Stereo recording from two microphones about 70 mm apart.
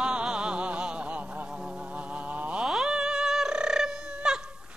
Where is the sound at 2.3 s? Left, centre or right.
Right.